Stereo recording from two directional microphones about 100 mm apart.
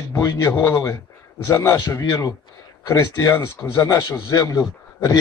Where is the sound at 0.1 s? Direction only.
40° left (ahead or behind).